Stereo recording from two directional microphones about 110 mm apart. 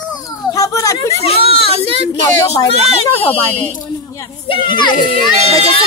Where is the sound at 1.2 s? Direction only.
60° left (ahead or behind).